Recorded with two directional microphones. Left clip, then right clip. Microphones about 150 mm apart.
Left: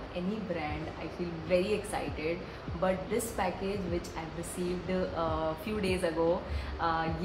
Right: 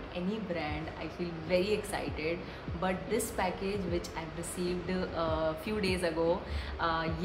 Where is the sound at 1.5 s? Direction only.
10° right (ahead or behind).